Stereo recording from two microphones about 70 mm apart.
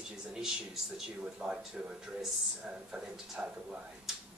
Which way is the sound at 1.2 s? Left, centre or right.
Right.